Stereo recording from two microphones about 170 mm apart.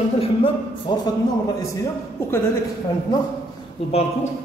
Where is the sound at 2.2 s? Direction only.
15° left (ahead or behind).